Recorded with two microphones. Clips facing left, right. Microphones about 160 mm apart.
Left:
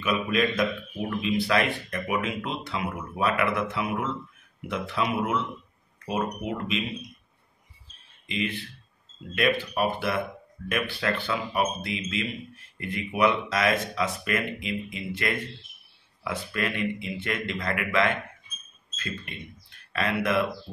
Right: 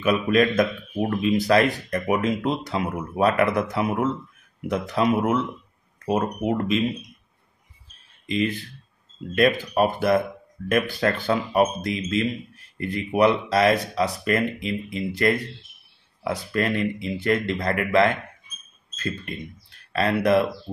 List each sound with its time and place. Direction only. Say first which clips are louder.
0.0 s a man's voice: right 6 dB; 45° right (ahead or behind)
6.4 s a man's voice: right 7 dB; 45° right (ahead or behind)
8.3 s speech: right 6 dB; 40° right (ahead or behind)
19.9 s speech: right 6 dB; 35° right (ahead or behind)